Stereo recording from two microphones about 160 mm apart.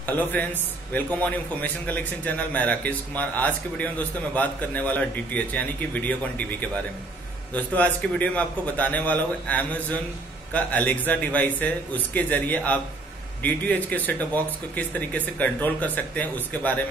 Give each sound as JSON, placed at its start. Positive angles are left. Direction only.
{"t": 0.0, "sound": "a man's voice", "side_deg": 10}